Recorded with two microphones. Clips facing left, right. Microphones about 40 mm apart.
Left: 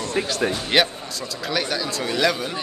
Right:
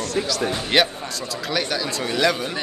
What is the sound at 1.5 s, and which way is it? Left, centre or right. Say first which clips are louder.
A man's voice: even; centre.